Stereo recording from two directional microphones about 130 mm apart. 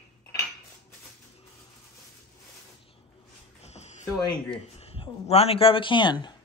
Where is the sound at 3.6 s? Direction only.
60° left (ahead or behind).